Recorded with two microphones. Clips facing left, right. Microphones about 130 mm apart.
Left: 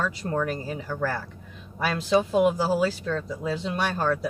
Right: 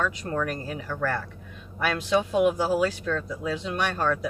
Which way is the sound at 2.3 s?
30° left (ahead or behind).